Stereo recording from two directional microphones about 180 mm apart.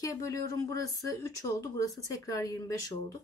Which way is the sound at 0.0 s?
20° left (ahead or behind).